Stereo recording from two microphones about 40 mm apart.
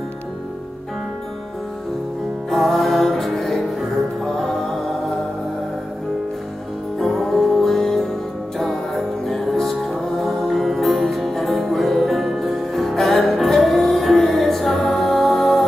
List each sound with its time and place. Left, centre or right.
2.5 s music: centre
7.0 s music: centre